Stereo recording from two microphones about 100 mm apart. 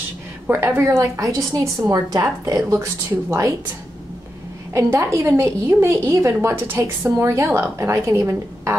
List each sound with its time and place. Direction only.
0.5 s a woman's voice: 20° right (ahead or behind)
4.7 s a woman's voice: 25° right (ahead or behind)